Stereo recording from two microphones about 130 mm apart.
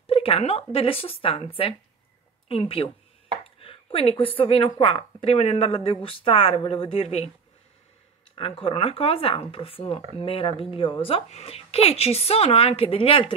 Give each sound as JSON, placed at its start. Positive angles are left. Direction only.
{"t": 0.0, "sound": "speech", "side_deg": 45}
{"t": 8.4, "sound": "speech", "side_deg": 45}